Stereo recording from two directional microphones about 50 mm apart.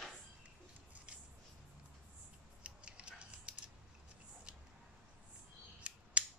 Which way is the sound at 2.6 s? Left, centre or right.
Right.